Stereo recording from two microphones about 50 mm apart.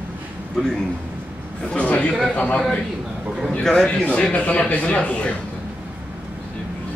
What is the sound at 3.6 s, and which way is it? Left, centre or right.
Speech, centre.